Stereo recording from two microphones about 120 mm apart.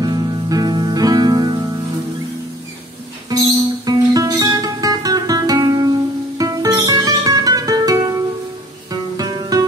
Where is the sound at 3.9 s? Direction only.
30° right (ahead or behind).